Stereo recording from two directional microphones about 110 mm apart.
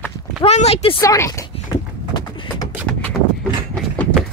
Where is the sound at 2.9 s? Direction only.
10° left (ahead or behind).